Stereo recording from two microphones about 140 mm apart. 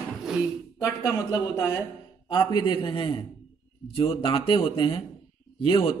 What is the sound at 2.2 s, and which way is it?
A man's voice, 35° left (ahead or behind).